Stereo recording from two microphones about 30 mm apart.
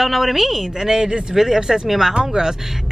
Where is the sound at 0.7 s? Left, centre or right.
Centre.